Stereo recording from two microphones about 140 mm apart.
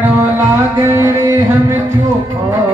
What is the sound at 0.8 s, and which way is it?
Music, 20° right (ahead or behind).